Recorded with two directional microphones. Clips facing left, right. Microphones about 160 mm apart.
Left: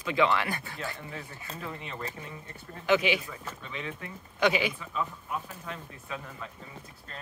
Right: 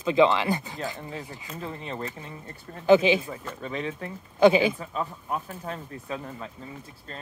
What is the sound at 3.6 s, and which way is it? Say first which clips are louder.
Speech: right 9 dB; 40° right (ahead or behind).